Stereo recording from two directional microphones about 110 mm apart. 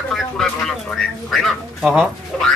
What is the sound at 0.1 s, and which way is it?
A man's voice, 5° left (ahead or behind).